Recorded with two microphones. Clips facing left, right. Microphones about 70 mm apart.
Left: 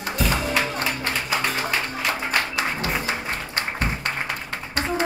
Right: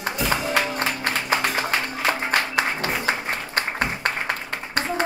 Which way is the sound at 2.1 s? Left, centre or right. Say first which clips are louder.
Right 3 dB; right.